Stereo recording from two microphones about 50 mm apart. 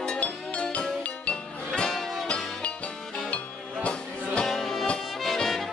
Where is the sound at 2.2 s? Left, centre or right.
Left.